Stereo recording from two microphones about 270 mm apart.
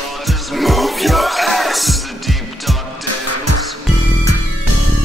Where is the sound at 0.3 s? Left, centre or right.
Centre.